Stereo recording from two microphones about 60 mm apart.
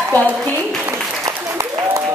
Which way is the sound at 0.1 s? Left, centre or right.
Right.